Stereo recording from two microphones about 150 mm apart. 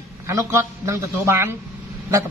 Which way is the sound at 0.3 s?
20° right (ahead or behind).